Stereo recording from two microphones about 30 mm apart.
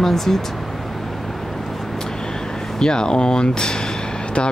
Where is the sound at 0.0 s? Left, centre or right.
Centre.